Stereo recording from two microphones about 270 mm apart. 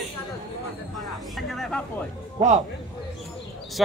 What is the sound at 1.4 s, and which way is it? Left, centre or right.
Speech, centre.